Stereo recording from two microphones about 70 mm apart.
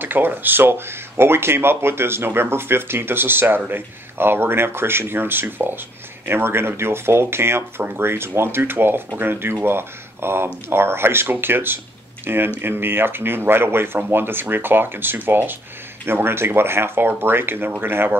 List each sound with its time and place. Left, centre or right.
0.0 s speech: right